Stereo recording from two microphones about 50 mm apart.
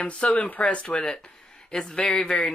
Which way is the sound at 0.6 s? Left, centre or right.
Centre.